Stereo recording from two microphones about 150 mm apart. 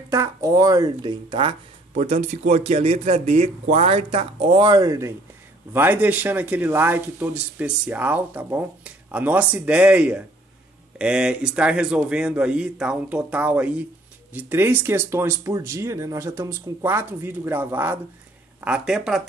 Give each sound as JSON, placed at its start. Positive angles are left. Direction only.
{"t": 0.1, "sound": "speech", "side_deg": -20}
{"t": 2.0, "sound": "speech", "side_deg": -45}